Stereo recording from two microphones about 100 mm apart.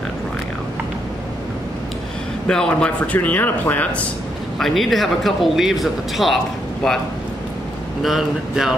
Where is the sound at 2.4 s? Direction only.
10° left (ahead or behind).